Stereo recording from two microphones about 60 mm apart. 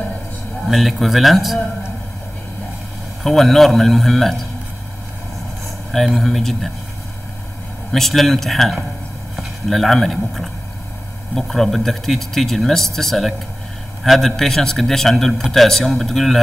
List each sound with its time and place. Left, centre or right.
0.7 s speech: centre
3.3 s speech: centre
5.9 s speech: centre
7.9 s speech: centre